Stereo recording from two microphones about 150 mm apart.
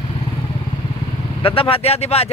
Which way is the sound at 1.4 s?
40° left (ahead or behind).